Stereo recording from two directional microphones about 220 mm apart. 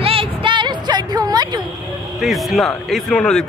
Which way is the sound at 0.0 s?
25° right (ahead or behind).